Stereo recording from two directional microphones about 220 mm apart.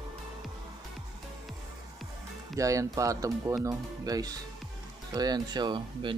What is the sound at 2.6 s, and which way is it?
Speech, 15° right (ahead or behind).